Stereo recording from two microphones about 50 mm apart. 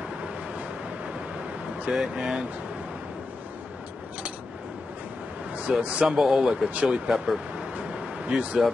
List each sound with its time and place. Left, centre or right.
1.9 s speech: centre
5.6 s a man's voice: right
6.0 s speech: centre
6.5 s speech: right
8.3 s speech: right